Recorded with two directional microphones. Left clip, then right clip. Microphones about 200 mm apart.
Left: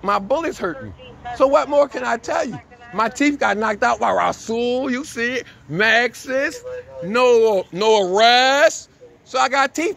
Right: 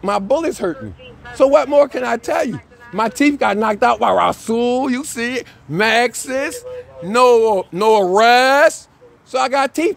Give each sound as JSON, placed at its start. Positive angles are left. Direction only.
{"t": 0.0, "sound": "speech", "side_deg": -50}
{"t": 4.8, "sound": "speech", "side_deg": -40}
{"t": 6.3, "sound": "speech", "side_deg": -10}
{"t": 7.7, "sound": "speech", "side_deg": -40}